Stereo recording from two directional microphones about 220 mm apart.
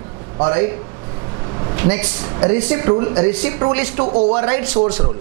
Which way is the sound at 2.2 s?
20° right (ahead or behind).